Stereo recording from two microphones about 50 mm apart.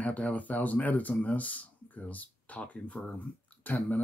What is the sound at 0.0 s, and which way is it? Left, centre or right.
Speech, left.